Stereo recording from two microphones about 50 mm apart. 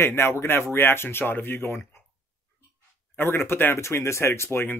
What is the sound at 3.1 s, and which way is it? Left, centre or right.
Speech, left.